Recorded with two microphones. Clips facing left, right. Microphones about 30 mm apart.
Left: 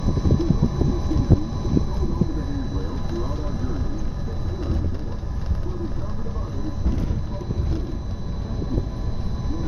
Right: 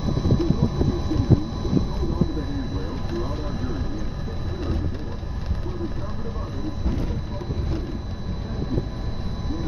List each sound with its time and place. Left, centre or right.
0.2 s vehicle: centre